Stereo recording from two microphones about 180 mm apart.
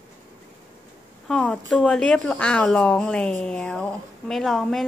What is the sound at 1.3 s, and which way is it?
Speech, 5° left (ahead or behind).